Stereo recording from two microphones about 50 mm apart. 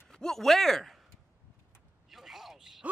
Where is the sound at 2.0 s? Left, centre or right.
Centre.